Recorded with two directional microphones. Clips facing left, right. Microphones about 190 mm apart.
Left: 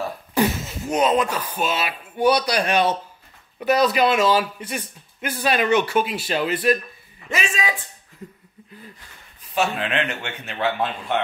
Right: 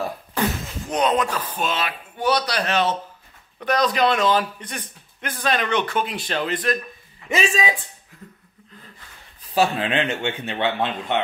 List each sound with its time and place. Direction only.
0.3 s a man's voice: 10° left (ahead or behind)
7.2 s speech: 30° right (ahead or behind)
9.5 s speech: 35° right (ahead or behind)